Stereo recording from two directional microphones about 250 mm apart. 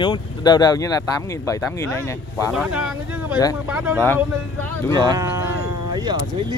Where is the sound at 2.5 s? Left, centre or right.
Centre.